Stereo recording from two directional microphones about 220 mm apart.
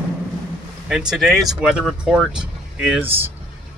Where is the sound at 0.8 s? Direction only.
5° right (ahead or behind).